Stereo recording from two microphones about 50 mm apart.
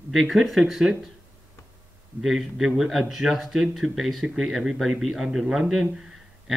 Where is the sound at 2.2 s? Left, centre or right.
Centre.